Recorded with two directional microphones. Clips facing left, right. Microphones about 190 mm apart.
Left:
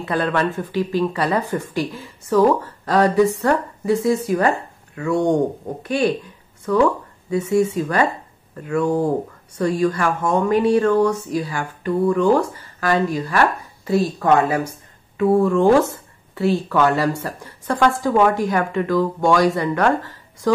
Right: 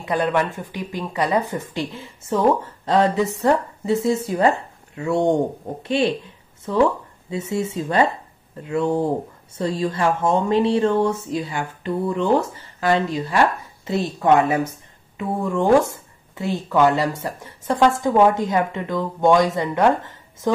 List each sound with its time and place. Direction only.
0.0 s speech: 15° right (ahead or behind)